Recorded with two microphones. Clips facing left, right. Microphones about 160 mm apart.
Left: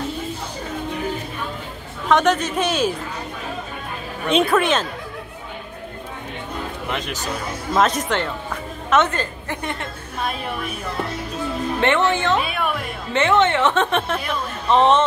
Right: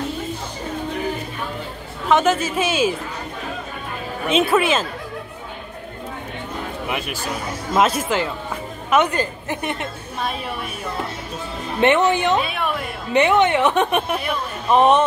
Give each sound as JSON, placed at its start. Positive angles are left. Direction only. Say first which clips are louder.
{"t": 2.0, "sound": "speech", "louder": "even", "side_deg": -5}
{"t": 4.3, "sound": "speech", "louder": "even", "side_deg": -5}
{"t": 6.9, "sound": "a woman's voice", "louder": "even", "side_deg": -10}
{"t": 11.8, "sound": "a woman's voice", "louder": "right 4 dB", "side_deg": -20}
{"t": 12.4, "sound": "speech", "louder": "even", "side_deg": 0}
{"t": 13.1, "sound": "a woman's voice", "louder": "right 2 dB", "side_deg": -15}